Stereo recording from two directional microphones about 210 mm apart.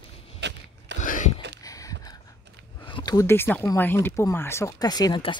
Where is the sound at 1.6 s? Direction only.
15° left (ahead or behind).